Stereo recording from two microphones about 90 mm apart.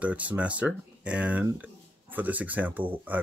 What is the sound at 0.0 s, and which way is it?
Speech, 15° right (ahead or behind).